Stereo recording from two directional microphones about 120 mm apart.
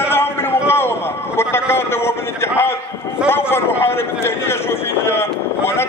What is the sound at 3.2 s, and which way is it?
A man's voice, 20° left (ahead or behind).